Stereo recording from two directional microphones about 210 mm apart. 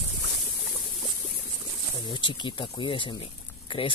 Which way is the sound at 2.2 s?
20° left (ahead or behind).